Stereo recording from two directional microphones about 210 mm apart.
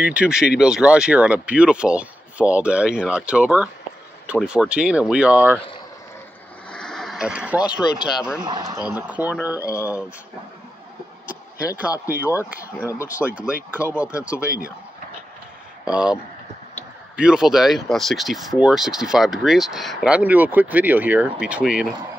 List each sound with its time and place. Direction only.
0.0 s speech: 5° right (ahead or behind)
6.7 s speech: centre (ahead or behind)
8.5 s speech: 20° right (ahead or behind)
8.8 s speech: 5° right (ahead or behind)
9.6 s speech: 15° left (ahead or behind)
9.8 s speech: 5° right (ahead or behind)
11.6 s speech: 5° right (ahead or behind)
15.9 s speech: 5° right (ahead or behind)
17.2 s speech: 5° right (ahead or behind)